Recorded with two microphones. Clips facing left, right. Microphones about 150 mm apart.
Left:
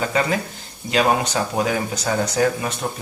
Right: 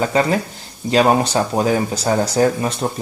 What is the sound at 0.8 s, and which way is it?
Speech, 35° right (ahead or behind).